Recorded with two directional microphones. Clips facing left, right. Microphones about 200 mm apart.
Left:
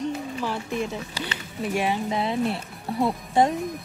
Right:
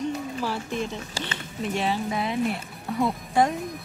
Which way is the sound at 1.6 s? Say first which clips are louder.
Left 1 dB; 10° left (ahead or behind).